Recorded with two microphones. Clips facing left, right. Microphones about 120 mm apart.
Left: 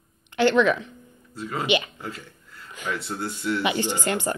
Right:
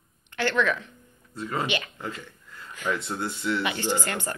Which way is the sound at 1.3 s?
Centre (ahead or behind).